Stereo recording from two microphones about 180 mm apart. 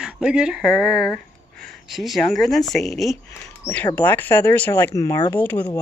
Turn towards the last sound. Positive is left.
turn(degrees=10)  # may be behind; listen again after turning